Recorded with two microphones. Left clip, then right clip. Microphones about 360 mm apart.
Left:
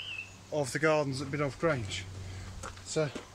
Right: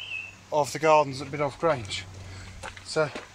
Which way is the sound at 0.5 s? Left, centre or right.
Centre.